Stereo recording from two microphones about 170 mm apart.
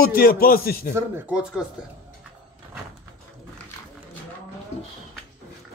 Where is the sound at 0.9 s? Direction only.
10° right (ahead or behind).